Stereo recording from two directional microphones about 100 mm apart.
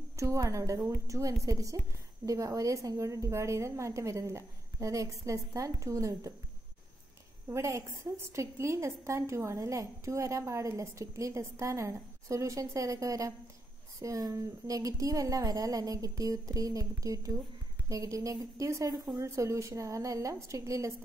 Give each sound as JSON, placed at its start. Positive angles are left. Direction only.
{"t": 0.1, "sound": "a woman's voice", "side_deg": -30}
{"t": 7.4, "sound": "a woman's voice", "side_deg": -30}